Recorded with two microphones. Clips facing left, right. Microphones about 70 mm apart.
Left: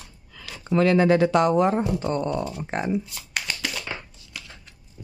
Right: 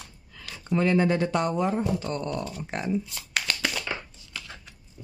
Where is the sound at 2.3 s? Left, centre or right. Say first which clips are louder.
Left 4 dB; centre.